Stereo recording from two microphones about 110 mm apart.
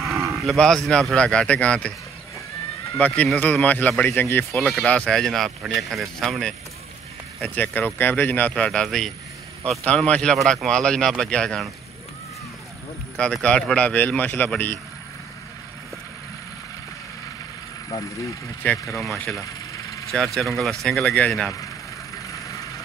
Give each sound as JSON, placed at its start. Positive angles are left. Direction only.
{"t": 0.3, "sound": "livestock", "side_deg": 0}
{"t": 0.8, "sound": "a man's voice", "side_deg": 5}
{"t": 3.0, "sound": "a man's voice", "side_deg": 10}
{"t": 4.5, "sound": "speech", "side_deg": 5}
{"t": 7.4, "sound": "a man's voice", "side_deg": 15}
{"t": 13.2, "sound": "a man's voice", "side_deg": 10}
{"t": 17.8, "sound": "speech", "side_deg": 35}
{"t": 18.6, "sound": "a man's voice", "side_deg": 15}
{"t": 18.9, "sound": "speech", "side_deg": 0}
{"t": 19.4, "sound": "vehicle", "side_deg": 30}
{"t": 20.3, "sound": "speech", "side_deg": 0}
{"t": 22.3, "sound": "vehicle", "side_deg": 30}